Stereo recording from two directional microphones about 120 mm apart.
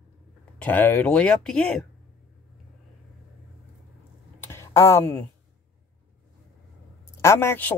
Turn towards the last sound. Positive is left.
turn(degrees=20)  # may be behind; listen again after turning